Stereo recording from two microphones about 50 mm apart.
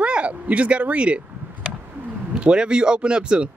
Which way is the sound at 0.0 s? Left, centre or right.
Right.